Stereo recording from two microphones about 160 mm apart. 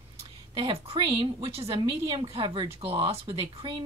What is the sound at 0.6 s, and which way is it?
Speech, 35° right (ahead or behind).